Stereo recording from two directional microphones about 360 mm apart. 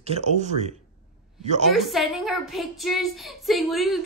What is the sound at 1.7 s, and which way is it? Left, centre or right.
A woman's voice, centre.